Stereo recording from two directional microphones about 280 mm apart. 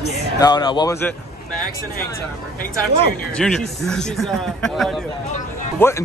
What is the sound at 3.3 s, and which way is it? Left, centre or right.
A man's voice, centre.